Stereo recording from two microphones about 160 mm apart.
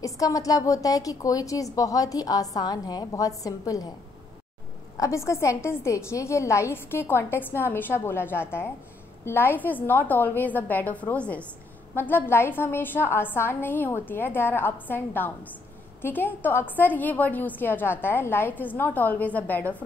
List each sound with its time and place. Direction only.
0.0 s a woman's voice: 20° left (ahead or behind)
4.9 s a woman's voice: 20° left (ahead or behind)